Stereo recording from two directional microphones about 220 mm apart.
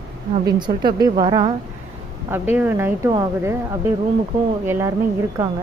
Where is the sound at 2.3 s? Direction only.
10° right (ahead or behind).